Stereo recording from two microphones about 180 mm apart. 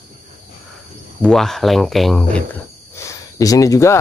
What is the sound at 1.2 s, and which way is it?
Speech, centre (ahead or behind).